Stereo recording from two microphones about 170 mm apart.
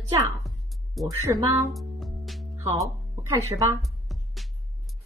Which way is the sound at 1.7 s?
Centre (ahead or behind).